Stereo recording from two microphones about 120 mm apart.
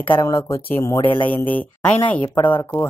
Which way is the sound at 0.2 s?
25° left (ahead or behind).